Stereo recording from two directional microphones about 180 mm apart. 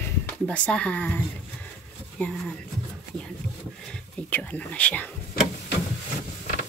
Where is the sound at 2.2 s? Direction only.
10° left (ahead or behind).